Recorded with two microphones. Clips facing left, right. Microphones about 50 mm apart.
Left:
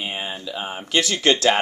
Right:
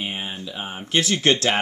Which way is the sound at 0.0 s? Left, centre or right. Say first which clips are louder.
Left 1 dB; left.